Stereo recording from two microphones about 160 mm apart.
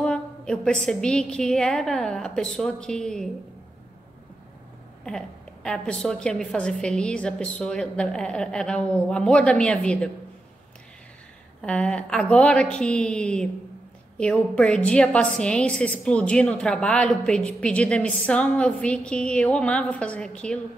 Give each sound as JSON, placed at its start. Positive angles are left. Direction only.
{"t": 0.0, "sound": "a woman's voice", "side_deg": 5}
{"t": 5.0, "sound": "a woman's voice", "side_deg": 5}
{"t": 11.6, "sound": "a woman's voice", "side_deg": 5}